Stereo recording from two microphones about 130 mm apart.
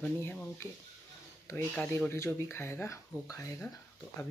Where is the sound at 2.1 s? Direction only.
20° left (ahead or behind).